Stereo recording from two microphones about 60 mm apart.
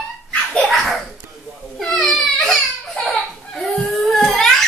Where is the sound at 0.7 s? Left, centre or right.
Centre.